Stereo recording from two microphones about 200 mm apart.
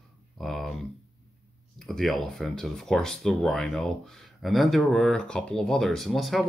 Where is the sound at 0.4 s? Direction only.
Centre (ahead or behind).